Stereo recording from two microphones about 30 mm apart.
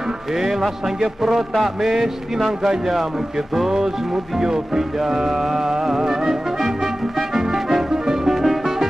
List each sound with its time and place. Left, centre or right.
0.3 s speech: centre
6.6 s music: centre
8.2 s music: centre